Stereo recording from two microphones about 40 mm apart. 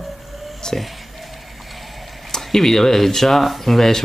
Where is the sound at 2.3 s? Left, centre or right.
Centre.